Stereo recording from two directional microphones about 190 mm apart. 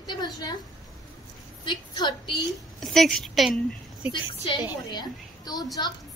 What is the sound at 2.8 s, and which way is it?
A woman's voice, centre (ahead or behind).